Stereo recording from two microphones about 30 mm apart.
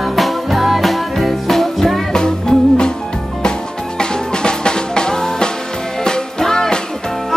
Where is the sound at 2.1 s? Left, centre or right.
Left.